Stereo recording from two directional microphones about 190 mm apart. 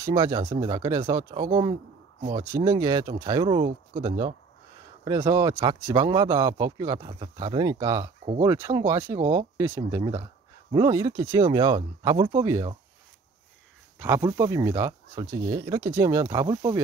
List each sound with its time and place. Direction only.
0.0 s speech: 20° right (ahead or behind)
13.9 s speech: 15° right (ahead or behind)